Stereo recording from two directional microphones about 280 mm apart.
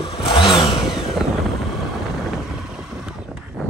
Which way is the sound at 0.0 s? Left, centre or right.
Centre.